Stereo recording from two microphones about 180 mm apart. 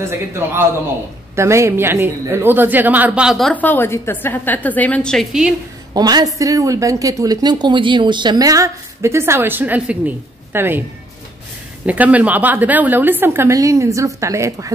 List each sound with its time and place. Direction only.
0.0 s a woman's voice: 15° right (ahead or behind)
5.9 s a woman's voice: 20° right (ahead or behind)
11.8 s a woman's voice: 10° right (ahead or behind)